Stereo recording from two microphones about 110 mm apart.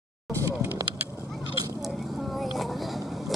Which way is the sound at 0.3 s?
25° right (ahead or behind).